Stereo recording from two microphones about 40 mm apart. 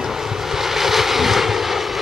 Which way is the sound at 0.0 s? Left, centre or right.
Centre.